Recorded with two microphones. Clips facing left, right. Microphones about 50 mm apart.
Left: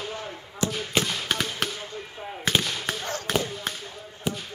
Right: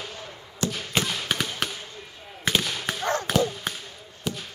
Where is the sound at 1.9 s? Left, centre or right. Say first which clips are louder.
Left 6 dB; left.